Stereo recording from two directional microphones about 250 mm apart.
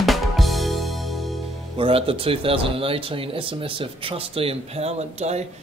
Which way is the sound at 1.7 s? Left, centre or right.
Right.